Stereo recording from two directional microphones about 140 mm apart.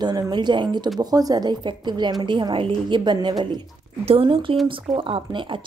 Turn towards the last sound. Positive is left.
turn(degrees=-35)  # may be behind; listen again after turning